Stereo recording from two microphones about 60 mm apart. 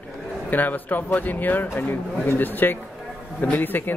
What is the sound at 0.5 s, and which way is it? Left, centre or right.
Speech, left.